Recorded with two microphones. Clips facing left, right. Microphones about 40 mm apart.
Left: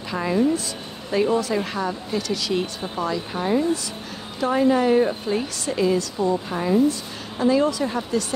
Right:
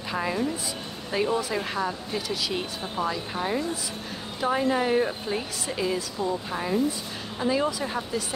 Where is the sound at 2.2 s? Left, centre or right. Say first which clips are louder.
Left 5 dB; centre.